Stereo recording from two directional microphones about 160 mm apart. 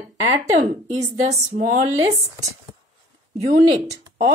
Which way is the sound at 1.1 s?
45° right (ahead or behind).